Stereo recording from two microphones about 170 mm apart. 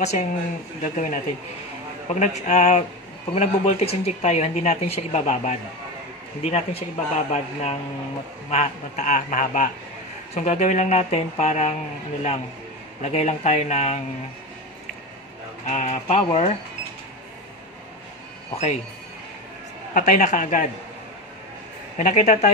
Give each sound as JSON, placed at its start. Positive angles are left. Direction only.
{"t": 0.0, "sound": "speech", "side_deg": 40}
{"t": 13.0, "sound": "speech", "side_deg": 40}
{"t": 15.6, "sound": "speech", "side_deg": 40}
{"t": 18.5, "sound": "speech", "side_deg": 40}
{"t": 19.9, "sound": "speech", "side_deg": 45}
{"t": 21.9, "sound": "speech", "side_deg": 45}